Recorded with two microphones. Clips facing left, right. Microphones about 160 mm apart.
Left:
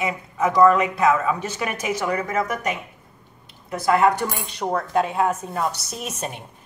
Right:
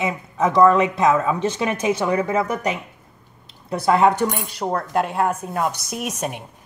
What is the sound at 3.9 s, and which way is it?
Speech, 25° right (ahead or behind).